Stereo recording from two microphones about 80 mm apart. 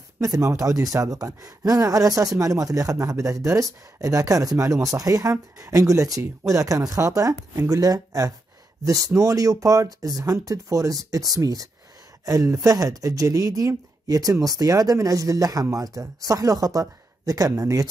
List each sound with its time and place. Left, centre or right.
0.2 s speech: right